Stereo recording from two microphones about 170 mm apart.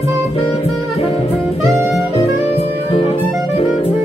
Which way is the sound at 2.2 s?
35° left (ahead or behind).